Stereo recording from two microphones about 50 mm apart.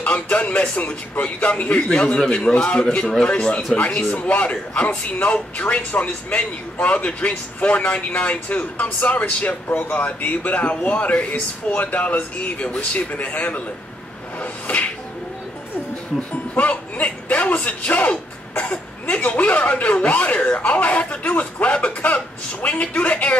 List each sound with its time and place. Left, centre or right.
0.0 s speech: left
14.4 s a sound: left
16.2 s speech: left